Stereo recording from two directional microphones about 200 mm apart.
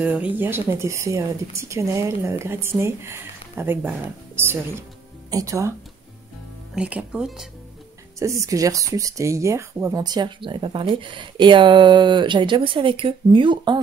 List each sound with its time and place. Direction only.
0.0 s speech: 5° right (ahead or behind)
8.2 s speech: 15° right (ahead or behind)